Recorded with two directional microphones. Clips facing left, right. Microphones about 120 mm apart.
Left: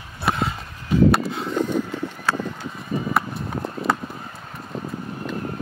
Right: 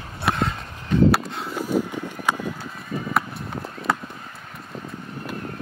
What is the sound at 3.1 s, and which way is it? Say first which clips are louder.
Clip-clop: left 1 dB; centre (ahead or behind).